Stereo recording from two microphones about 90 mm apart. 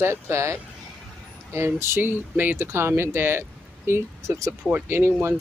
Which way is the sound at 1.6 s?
30° right (ahead or behind).